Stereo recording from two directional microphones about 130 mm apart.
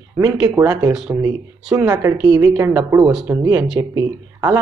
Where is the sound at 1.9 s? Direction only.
25° right (ahead or behind).